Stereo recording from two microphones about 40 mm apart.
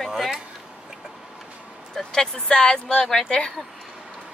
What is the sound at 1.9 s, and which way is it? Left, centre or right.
Speech, centre.